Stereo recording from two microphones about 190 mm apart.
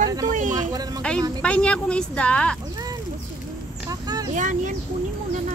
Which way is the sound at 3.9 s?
20° right (ahead or behind).